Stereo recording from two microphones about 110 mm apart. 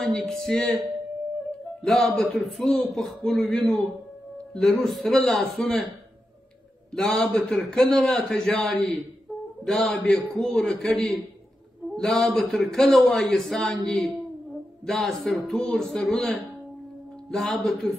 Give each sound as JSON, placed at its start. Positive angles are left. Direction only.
{"t": 0.0, "sound": "a man's voice", "side_deg": 5}
{"t": 1.8, "sound": "a man's voice", "side_deg": 5}
{"t": 6.9, "sound": "a man's voice", "side_deg": 5}